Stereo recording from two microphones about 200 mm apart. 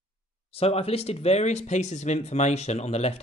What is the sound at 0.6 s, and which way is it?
Speech, 30° left (ahead or behind).